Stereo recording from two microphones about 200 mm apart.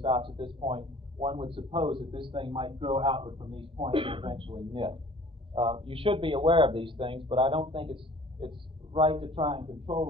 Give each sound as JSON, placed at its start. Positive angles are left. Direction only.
{"t": 0.0, "sound": "a man's voice", "side_deg": -25}